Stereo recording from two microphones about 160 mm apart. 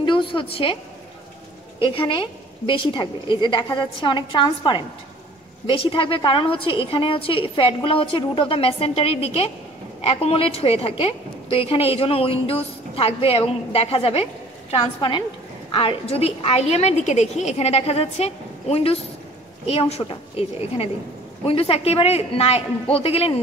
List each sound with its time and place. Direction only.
0.0 s a woman's voice: 30° left (ahead or behind)
1.8 s a woman's voice: 35° left (ahead or behind)